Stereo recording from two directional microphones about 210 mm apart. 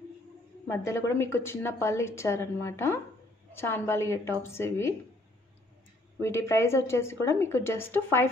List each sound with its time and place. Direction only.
0.7 s a woman's voice: 15° left (ahead or behind)
6.2 s a woman's voice: 15° left (ahead or behind)